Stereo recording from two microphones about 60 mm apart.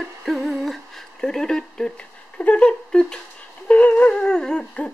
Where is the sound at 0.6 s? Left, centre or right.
Centre.